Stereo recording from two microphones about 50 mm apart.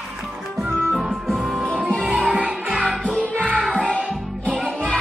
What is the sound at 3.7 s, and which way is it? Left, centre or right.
Music, centre.